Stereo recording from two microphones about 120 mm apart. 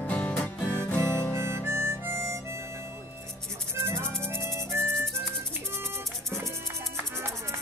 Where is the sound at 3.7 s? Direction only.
20° right (ahead or behind).